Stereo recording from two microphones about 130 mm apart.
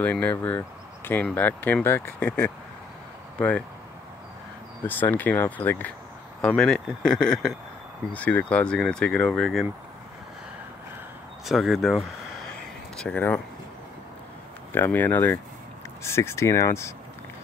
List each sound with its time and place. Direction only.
0.0 s speech: 10° left (ahead or behind)
4.8 s speech: 15° left (ahead or behind)
11.4 s speech: centre (ahead or behind)
14.7 s speech: 15° left (ahead or behind)